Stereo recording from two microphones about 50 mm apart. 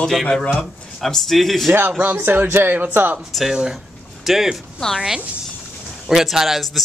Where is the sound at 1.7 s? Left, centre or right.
Right.